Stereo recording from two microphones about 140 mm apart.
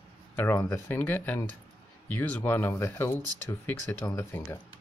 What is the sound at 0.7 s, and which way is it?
Speech, 15° left (ahead or behind).